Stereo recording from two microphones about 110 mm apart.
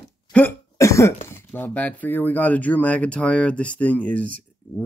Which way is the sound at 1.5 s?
15° left (ahead or behind).